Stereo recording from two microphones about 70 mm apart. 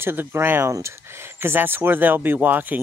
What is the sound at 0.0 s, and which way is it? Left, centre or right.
Speech, right.